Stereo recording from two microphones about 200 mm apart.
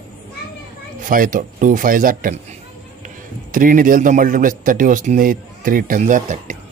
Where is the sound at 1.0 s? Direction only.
45° right (ahead or behind).